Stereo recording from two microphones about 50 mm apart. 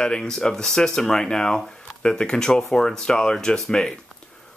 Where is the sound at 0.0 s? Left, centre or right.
Centre.